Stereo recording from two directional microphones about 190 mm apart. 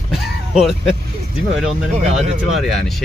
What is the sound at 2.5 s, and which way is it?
Speech, centre (ahead or behind).